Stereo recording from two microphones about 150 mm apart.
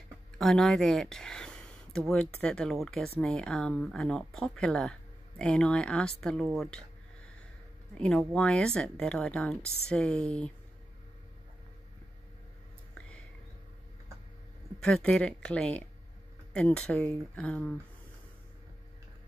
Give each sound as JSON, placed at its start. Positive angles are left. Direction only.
{"t": 0.4, "sound": "speech", "side_deg": 5}
{"t": 8.0, "sound": "speech", "side_deg": 0}
{"t": 14.8, "sound": "speech", "side_deg": 5}